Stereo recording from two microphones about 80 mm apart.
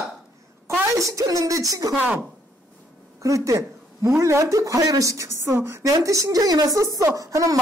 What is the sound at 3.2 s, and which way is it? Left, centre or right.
A woman's voice, right.